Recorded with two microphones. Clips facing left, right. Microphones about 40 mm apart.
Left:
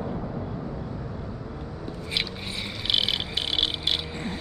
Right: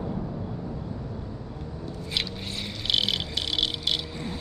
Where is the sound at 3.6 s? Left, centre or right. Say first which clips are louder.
Left 1 dB; left.